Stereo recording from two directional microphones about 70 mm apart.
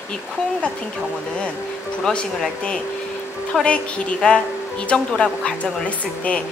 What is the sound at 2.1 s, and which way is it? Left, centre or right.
A woman's voice, centre.